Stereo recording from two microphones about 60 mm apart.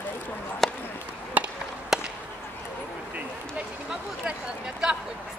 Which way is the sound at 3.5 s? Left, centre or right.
Centre.